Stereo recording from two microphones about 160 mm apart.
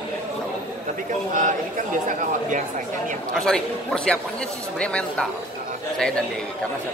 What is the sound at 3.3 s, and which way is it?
A man's voice, 5° left (ahead or behind).